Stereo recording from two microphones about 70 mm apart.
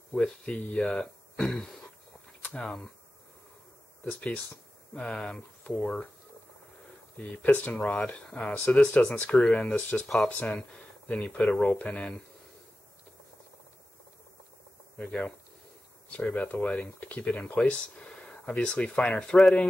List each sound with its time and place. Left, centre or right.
0.1 s speech: centre
4.1 s speech: centre
7.2 s speech: left
15.0 s speech: centre